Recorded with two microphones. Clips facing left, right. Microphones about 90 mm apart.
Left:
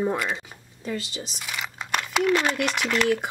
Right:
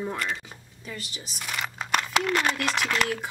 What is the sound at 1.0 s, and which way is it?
Speech, 90° left.